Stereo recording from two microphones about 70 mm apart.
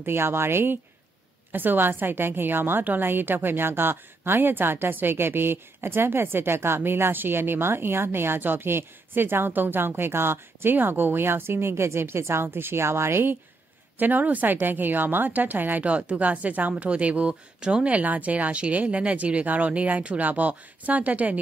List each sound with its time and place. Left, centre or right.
0.0 s a woman's voice: right